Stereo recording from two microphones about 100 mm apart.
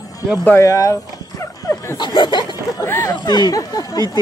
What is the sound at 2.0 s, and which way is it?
Speech, 50° left (ahead or behind).